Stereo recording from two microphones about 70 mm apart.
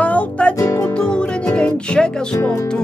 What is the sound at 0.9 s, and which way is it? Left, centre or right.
Music, centre.